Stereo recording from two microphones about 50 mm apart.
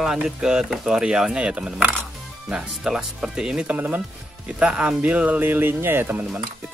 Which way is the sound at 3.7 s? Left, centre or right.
Right.